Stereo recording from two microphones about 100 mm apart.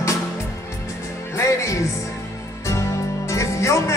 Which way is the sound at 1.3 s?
30° left (ahead or behind).